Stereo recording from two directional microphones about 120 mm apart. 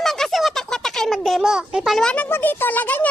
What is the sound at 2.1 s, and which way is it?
Speech, 15° left (ahead or behind).